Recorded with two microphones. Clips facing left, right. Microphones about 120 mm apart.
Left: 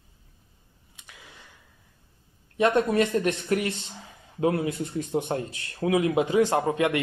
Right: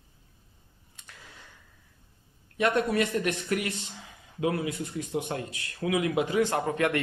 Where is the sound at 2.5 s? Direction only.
30° left (ahead or behind).